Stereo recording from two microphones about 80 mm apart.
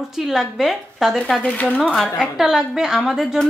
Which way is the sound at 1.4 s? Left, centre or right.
Centre.